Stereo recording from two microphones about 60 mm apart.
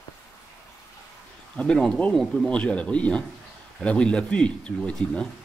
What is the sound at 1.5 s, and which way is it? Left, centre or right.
Speech, centre.